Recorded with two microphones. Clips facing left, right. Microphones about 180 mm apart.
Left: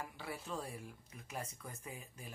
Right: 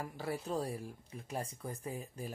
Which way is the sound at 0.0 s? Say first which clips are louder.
Right 7 dB; 40° right (ahead or behind).